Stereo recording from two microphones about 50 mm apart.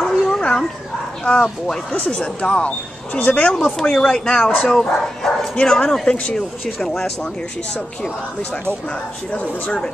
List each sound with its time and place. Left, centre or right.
0.0 s dog: centre
1.2 s speech: centre
4.6 s speech: centre
6.6 s speech: centre
9.3 s speech: left